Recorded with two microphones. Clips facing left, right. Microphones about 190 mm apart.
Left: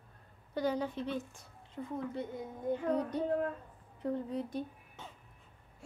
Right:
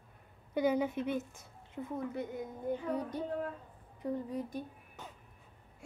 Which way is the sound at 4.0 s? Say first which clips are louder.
Left 1 dB; 10° right (ahead or behind).